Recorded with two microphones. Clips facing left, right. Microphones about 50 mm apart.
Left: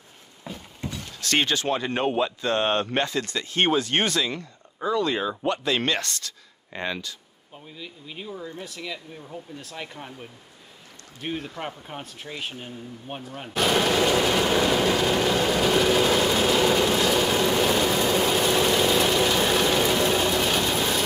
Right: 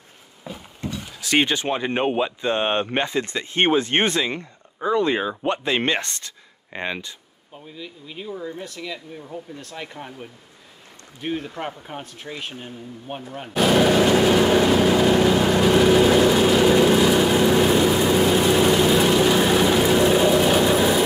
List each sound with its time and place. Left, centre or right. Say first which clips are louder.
0.5 s a sound: right 2 dB; centre
0.9 s speech: right 4 dB; centre
7.5 s speech: right 3 dB; centre
15.0 s vehicle: right 5 dB; centre